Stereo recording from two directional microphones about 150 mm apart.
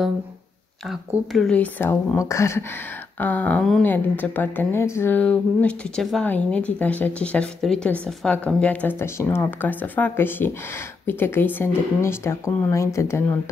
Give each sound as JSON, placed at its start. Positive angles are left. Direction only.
{"t": 0.8, "sound": "a woman's voice", "side_deg": 0}